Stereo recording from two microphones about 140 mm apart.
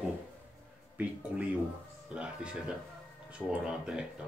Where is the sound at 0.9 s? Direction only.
10° right (ahead or behind).